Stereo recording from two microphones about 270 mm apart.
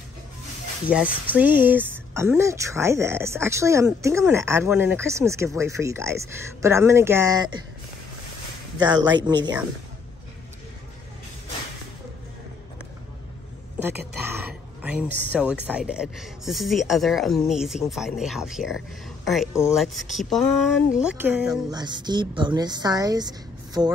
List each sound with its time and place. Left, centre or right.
0.8 s speech: centre
9.2 s speech: centre
13.8 s speech: centre
21.6 s speech: centre